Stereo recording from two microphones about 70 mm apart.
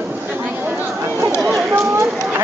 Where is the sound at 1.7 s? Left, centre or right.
Right.